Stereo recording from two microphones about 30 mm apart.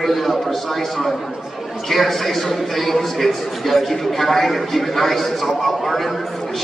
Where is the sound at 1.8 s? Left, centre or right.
Centre.